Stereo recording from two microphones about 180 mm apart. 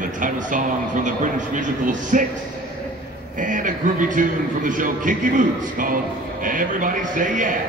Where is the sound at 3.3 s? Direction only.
45° right (ahead or behind).